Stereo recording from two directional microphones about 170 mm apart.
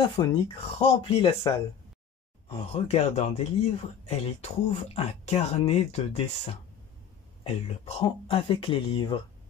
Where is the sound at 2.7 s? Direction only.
40° left (ahead or behind).